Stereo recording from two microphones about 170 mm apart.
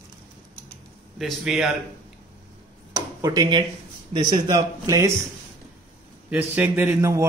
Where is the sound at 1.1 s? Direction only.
Centre (ahead or behind).